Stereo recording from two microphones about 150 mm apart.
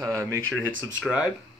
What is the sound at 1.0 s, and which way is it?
Speech, 5° right (ahead or behind).